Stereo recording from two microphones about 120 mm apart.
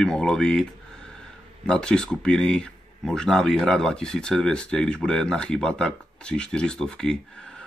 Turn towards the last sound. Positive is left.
turn(degrees=5)  # may be behind; listen again after turning